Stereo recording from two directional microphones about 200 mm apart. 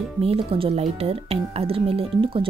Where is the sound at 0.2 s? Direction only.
30° right (ahead or behind).